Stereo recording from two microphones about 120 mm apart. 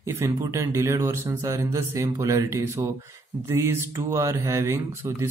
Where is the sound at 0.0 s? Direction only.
25° right (ahead or behind).